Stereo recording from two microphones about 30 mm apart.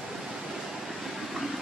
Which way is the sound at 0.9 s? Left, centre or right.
Centre.